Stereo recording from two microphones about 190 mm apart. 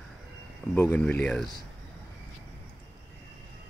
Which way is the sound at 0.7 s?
5° left (ahead or behind).